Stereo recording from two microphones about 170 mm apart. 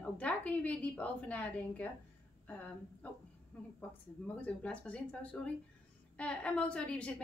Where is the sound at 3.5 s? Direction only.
10° left (ahead or behind).